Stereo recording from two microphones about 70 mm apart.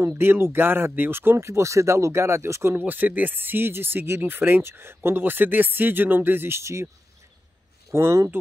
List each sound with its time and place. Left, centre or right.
0.1 s speech: right
2.8 s speech: right
7.9 s speech: right